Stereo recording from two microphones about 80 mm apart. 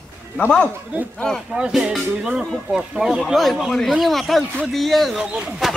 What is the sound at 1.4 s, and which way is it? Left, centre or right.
Speech, centre.